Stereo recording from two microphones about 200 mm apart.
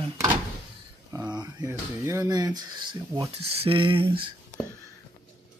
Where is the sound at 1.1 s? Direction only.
20° right (ahead or behind).